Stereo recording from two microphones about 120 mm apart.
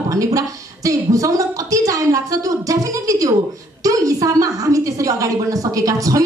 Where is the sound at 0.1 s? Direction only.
25° right (ahead or behind).